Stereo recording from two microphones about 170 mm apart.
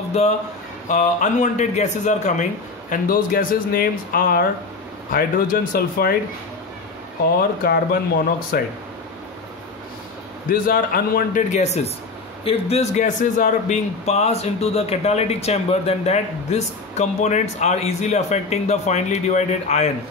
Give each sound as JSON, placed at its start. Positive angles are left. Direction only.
{"t": 0.2, "sound": "a man's voice", "side_deg": 40}
{"t": 2.9, "sound": "speech", "side_deg": 55}
{"t": 7.6, "sound": "speech", "side_deg": 65}
{"t": 10.5, "sound": "a man's voice", "side_deg": 60}